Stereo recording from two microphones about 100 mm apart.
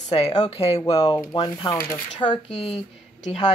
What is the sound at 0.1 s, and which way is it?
Speech, 80° left.